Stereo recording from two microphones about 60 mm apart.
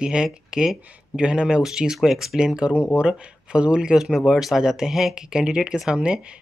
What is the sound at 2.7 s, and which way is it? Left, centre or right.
Speech, left.